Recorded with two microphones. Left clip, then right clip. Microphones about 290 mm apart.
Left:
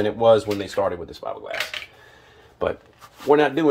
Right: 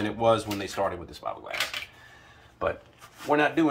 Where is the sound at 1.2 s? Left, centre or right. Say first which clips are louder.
Left 3 dB; left.